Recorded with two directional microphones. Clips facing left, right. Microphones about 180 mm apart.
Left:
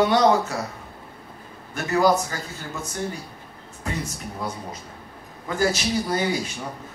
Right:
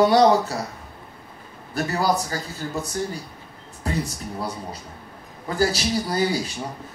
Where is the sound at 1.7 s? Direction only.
35° right (ahead or behind).